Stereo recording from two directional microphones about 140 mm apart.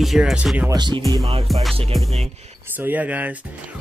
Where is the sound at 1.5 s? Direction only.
Centre (ahead or behind).